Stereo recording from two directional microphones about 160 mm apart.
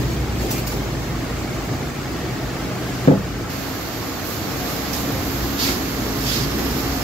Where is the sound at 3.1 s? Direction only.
40° left (ahead or behind).